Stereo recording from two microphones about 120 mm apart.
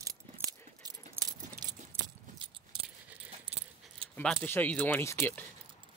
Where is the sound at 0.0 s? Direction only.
30° right (ahead or behind).